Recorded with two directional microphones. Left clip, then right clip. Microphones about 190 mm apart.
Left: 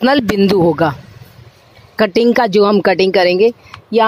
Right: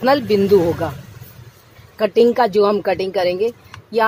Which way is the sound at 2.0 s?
55° left (ahead or behind).